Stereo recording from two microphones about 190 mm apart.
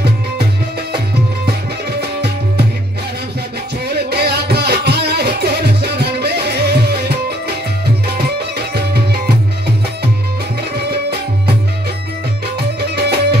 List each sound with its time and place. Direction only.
1.9 s music: 60° right (ahead or behind)
3.9 s music: 60° right (ahead or behind)
8.5 s music: 55° right (ahead or behind)
12.9 s music: 60° right (ahead or behind)